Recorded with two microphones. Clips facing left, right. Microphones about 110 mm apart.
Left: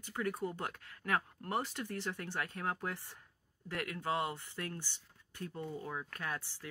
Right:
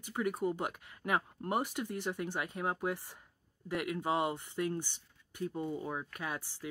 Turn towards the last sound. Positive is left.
turn(degrees=-15)  # may be behind; listen again after turning